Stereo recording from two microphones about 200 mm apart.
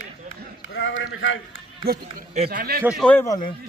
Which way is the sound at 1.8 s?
45° right (ahead or behind).